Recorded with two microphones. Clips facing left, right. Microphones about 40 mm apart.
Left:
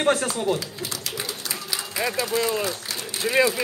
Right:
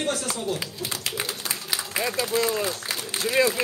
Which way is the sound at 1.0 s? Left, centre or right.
Right.